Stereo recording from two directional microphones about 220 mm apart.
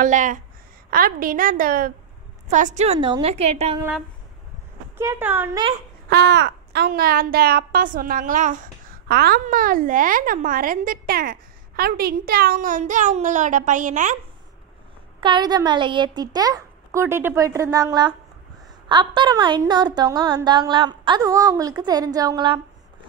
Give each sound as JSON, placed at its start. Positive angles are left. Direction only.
{"t": 0.0, "sound": "a woman's voice", "side_deg": -35}
{"t": 4.9, "sound": "a child's voice", "side_deg": -10}
{"t": 6.0, "sound": "a woman's voice", "side_deg": -50}
{"t": 15.1, "sound": "a child's voice", "side_deg": -20}